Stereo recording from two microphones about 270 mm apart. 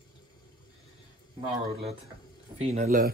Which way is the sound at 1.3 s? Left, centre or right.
Right.